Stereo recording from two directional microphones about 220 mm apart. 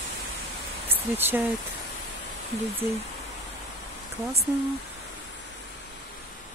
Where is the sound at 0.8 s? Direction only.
10° right (ahead or behind).